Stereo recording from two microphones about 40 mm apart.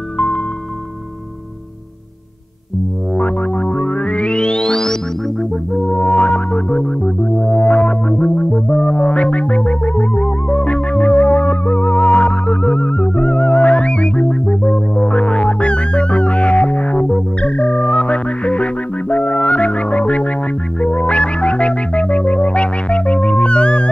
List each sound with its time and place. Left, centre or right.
3.2 s music: left; by 4.9 s centre
5.9 s music: left